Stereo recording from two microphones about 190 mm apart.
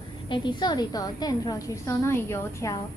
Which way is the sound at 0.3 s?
25° left (ahead or behind).